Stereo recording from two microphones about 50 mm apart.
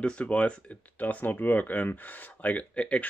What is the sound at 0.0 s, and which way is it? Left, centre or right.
Speech, left.